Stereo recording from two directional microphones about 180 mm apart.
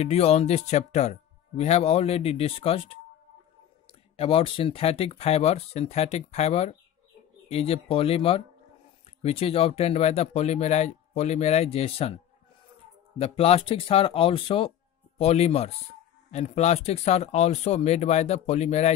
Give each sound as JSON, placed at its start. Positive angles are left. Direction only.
{"t": 0.0, "sound": "speech", "side_deg": 35}
{"t": 4.2, "sound": "speech", "side_deg": 30}
{"t": 13.2, "sound": "speech", "side_deg": 35}